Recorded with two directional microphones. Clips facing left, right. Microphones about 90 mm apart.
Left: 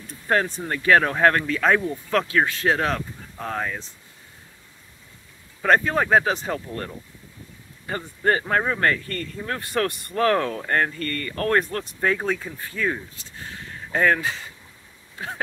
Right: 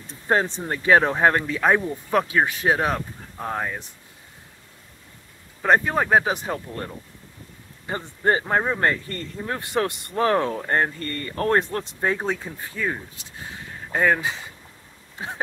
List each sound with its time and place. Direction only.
0.0 s speech: 25° right (ahead or behind)
5.6 s speech: 15° right (ahead or behind)
7.8 s speech: 20° right (ahead or behind)
15.1 s throat clearing: 20° right (ahead or behind)